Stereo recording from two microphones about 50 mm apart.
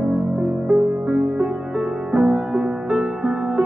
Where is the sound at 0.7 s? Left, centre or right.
Centre.